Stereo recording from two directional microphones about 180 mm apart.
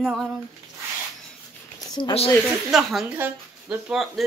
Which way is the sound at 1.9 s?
25° left (ahead or behind).